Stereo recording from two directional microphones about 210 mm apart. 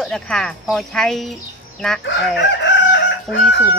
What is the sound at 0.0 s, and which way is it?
Speech, centre (ahead or behind).